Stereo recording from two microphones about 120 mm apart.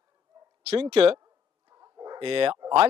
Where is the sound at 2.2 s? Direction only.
45° right (ahead or behind).